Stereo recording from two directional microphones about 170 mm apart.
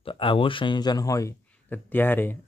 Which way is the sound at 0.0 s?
30° left (ahead or behind).